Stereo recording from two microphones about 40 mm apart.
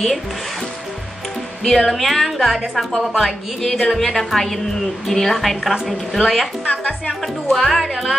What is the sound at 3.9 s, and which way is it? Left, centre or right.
A woman's voice, centre.